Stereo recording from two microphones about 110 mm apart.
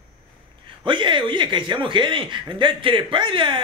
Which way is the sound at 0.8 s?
45° right (ahead or behind).